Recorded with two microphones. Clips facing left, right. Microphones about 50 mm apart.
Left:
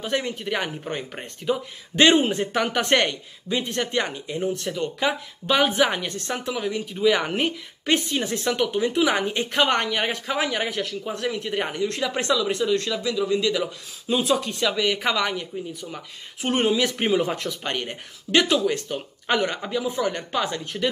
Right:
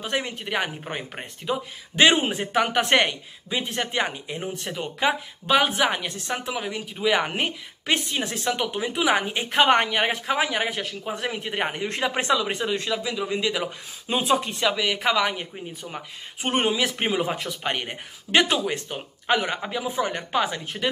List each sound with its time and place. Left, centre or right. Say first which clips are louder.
0.0 s speech: left 2 dB; centre
5.5 s a woman's voice: left 1 dB; centre; by 14.5 s right
14.5 s speech: left 1 dB; centre
15.3 s speech: left 3 dB; right
16.4 s speech: left 2 dB; centre
19.2 s speech: even; centre